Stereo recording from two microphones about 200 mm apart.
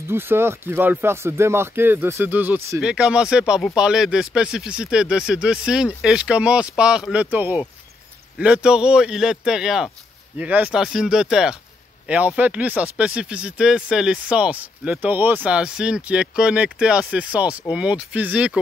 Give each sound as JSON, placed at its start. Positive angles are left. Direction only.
{"t": 0.1, "sound": "speech", "side_deg": -10}